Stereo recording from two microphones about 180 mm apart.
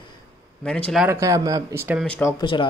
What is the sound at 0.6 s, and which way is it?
Speech, 5° left (ahead or behind).